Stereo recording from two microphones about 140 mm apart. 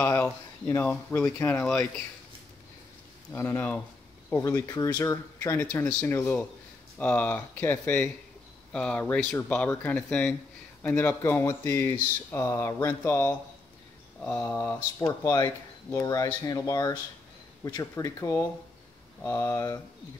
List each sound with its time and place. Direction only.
0.0 s speech: 15° left (ahead or behind)
3.3 s speech: 15° left (ahead or behind)
4.3 s speech: 25° left (ahead or behind)
5.9 s speech: 10° left (ahead or behind)